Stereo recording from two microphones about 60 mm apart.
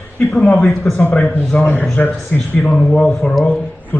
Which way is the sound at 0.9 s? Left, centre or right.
Centre.